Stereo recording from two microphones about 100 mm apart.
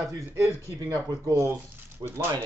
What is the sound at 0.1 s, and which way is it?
A man's voice, 30° right (ahead or behind).